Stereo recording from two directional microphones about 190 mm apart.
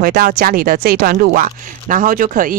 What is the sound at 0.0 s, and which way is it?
Speech, 50° right (ahead or behind).